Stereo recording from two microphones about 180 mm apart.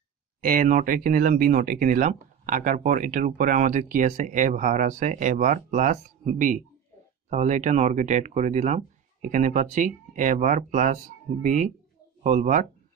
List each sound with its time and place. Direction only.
0.4 s speech: 50° right (ahead or behind)